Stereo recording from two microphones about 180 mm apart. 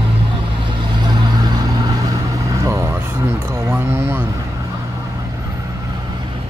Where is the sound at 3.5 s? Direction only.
15° right (ahead or behind).